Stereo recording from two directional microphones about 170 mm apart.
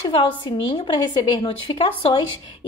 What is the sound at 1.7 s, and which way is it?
Speech, 30° left (ahead or behind).